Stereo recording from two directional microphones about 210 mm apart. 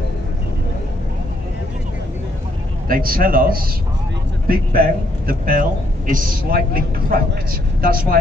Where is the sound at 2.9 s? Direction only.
45° right (ahead or behind).